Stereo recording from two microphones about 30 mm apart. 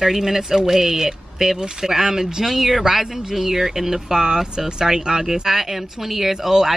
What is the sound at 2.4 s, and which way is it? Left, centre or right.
A woman's voice, centre.